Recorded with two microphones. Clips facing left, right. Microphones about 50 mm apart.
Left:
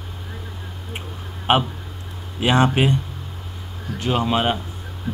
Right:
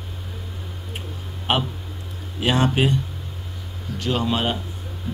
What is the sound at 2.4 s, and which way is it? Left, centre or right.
Speech, left.